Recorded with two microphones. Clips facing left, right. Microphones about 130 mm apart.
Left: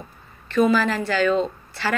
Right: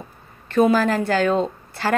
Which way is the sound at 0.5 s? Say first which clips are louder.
Right 2 dB; 50° right (ahead or behind).